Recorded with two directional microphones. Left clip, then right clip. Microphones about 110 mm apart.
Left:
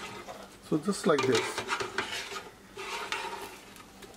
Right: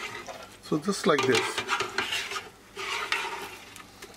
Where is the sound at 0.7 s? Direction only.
35° right (ahead or behind).